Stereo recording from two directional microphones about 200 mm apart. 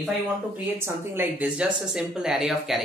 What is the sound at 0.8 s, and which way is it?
Speech, 10° right (ahead or behind).